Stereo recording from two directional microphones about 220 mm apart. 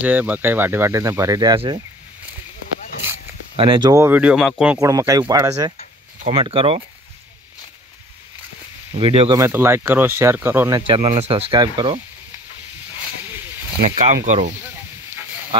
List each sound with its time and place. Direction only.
0.0 s speech: 5° right (ahead or behind)
3.5 s speech: 20° right (ahead or behind); by 4.7 s centre (ahead or behind)
4.7 s speech: 15° right (ahead or behind)
6.2 s speech: 25° right (ahead or behind)
8.9 s speech: 25° right (ahead or behind)
9.4 s speech: 10° right (ahead or behind)
10.9 s speech: 25° right (ahead or behind)
13.8 s speech: 30° right (ahead or behind)